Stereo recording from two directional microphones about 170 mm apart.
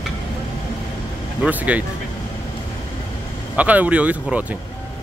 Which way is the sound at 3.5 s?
10° right (ahead or behind).